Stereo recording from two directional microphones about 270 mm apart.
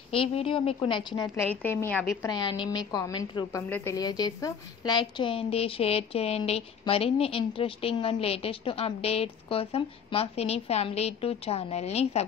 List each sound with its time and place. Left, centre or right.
0.1 s a woman's voice: left